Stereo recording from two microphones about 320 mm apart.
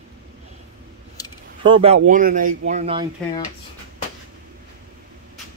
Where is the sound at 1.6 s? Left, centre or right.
Centre.